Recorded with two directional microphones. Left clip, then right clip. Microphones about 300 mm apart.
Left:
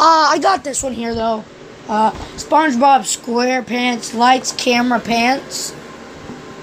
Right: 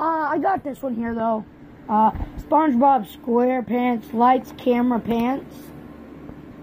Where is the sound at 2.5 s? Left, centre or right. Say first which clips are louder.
Left 5 dB; centre.